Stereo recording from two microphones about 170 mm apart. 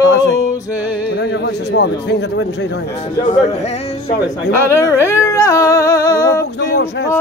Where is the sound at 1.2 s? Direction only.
80° left.